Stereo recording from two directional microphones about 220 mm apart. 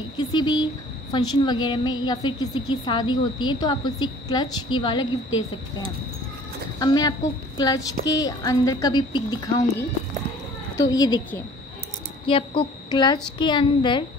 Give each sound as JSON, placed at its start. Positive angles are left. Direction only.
{"t": 0.2, "sound": "a woman's voice", "side_deg": 20}
{"t": 6.8, "sound": "a woman's voice", "side_deg": 20}